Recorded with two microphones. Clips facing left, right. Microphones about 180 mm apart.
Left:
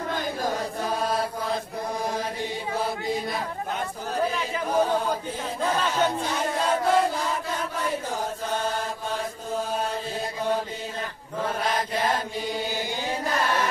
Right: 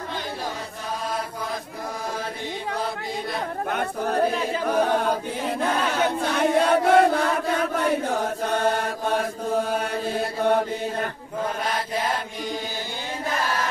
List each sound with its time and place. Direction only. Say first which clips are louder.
3.7 s speech: right 7 dB; 60° right (ahead or behind)
4.6 s a capella: right 1 dB; 65° right (ahead or behind)
5.8 s chant: right 1 dB; 60° right (ahead or behind)
10.4 s mantra: right 6 dB; 60° right (ahead or behind)